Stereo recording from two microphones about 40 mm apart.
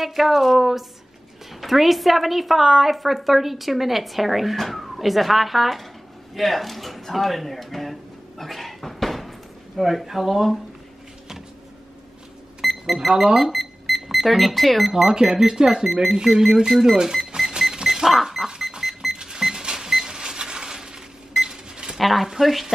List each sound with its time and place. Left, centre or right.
0.0 s a woman's voice: centre
6.3 s a sound: centre
9.8 s a woman's voice: centre
12.6 s a sound: centre
13.1 s speech: centre
13.5 s cash register: centre
14.0 s speech: centre
14.9 s a woman's voice: centre
17.5 s a sound: centre
19.1 s cash register: centre
22.0 s a woman's voice: centre